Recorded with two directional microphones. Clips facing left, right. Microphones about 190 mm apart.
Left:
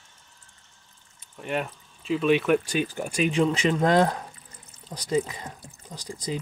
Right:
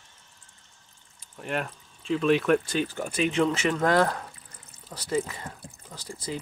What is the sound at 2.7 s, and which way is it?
Speech, 15° left (ahead or behind).